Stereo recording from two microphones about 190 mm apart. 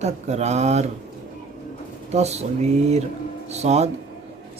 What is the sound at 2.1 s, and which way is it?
Speech, 35° right (ahead or behind).